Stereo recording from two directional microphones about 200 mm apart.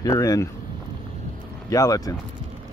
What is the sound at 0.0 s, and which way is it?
Speech, 15° left (ahead or behind).